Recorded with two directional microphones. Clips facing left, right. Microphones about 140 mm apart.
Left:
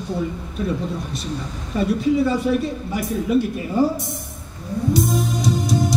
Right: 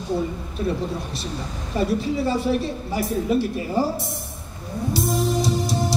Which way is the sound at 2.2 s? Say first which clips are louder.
Left 3 dB; 35° right (ahead or behind).